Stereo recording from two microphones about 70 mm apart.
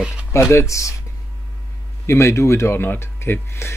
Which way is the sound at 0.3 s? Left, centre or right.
Left.